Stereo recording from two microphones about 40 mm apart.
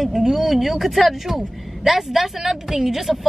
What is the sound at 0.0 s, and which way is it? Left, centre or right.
Speech, centre.